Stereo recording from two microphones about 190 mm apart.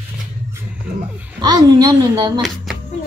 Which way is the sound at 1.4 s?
20° right (ahead or behind).